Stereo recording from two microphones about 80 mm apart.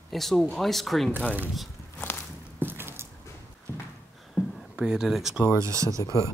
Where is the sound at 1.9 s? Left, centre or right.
Centre.